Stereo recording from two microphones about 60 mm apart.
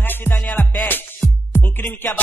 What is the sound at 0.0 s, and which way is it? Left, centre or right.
Music, left.